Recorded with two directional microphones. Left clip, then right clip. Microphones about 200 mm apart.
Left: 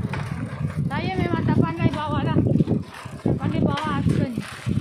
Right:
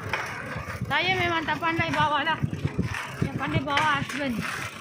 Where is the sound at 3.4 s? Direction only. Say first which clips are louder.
Right 4 dB; 25° right (ahead or behind).